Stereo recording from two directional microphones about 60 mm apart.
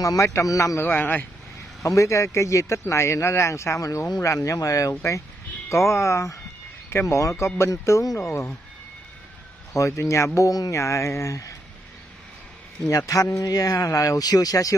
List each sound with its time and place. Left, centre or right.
0.0 s a man's voice: left
0.7 s a man's voice: left
1.8 s speech: left
9.8 s speech: left
12.8 s speech: left